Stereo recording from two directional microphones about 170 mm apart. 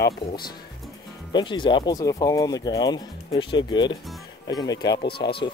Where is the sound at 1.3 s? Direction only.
30° left (ahead or behind).